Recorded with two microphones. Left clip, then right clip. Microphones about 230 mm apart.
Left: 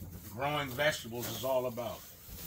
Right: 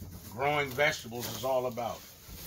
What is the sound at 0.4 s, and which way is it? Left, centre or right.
Speech, centre.